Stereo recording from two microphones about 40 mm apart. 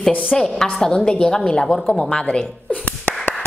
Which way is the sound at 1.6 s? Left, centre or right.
Centre.